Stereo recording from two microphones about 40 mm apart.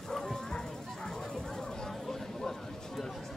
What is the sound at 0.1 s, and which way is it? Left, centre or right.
Bow-wow, centre.